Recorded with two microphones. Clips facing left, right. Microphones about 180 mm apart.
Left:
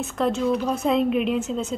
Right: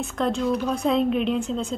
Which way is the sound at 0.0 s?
Centre (ahead or behind).